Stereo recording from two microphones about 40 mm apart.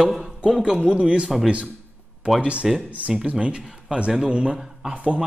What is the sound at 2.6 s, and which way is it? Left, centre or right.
Speech, centre.